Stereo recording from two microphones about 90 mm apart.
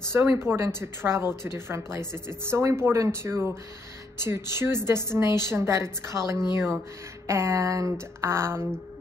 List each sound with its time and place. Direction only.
0.0 s a woman's voice: 30° right (ahead or behind)